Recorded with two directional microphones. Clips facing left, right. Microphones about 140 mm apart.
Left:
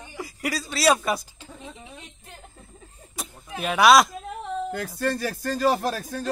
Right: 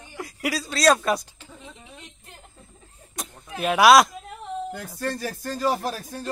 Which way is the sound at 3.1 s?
Centre (ahead or behind).